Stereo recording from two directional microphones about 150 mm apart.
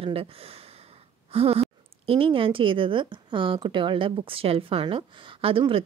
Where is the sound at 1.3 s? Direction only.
45° right (ahead or behind).